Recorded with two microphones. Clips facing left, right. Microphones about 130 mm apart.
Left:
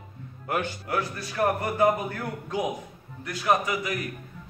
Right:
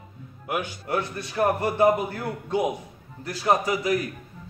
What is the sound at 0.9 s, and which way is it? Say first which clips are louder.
A man's voice: right 2 dB; 25° right (ahead or behind).